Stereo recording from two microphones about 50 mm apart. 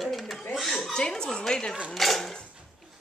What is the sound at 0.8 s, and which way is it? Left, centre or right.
Speech, centre.